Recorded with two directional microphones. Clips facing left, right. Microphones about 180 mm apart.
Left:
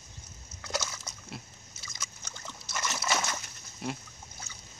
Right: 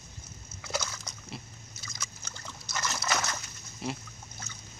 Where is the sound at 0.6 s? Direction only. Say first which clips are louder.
Even; centre (ahead or behind).